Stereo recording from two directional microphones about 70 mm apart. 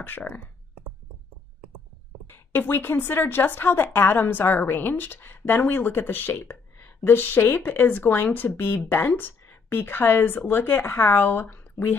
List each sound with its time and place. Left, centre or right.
0.0 s a woman's voice: left
2.2 s a woman's voice: left